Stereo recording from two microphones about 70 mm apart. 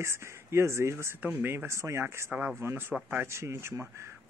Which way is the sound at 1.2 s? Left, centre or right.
Right.